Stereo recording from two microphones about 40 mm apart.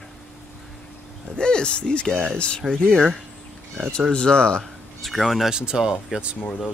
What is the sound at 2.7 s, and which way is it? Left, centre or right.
Speech, centre.